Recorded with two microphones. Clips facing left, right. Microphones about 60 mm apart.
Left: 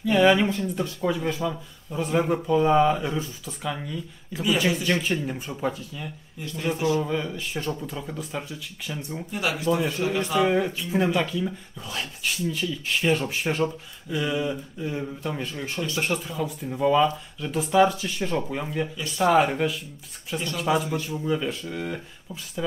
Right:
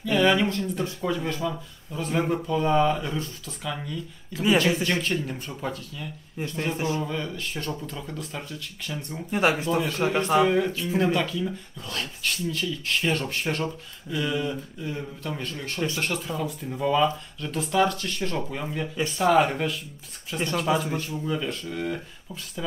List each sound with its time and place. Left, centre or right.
0.0 s speech: centre
6.3 s speech: right
7.0 s speech: centre
9.3 s speech: right
10.4 s speech: centre